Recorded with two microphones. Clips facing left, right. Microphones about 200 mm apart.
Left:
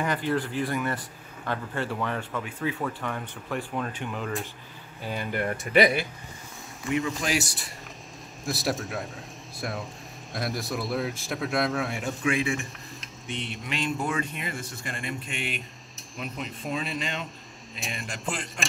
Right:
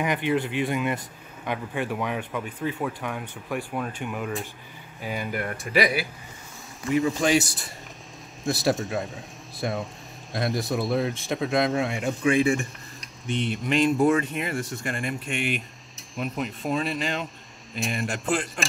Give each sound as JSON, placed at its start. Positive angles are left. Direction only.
{"t": 0.0, "sound": "a man's voice", "side_deg": -15}
{"t": 11.1, "sound": "speech", "side_deg": -20}
{"t": 11.8, "sound": "speech", "side_deg": 0}